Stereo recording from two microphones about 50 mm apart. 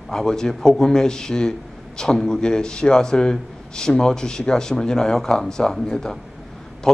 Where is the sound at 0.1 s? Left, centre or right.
Centre.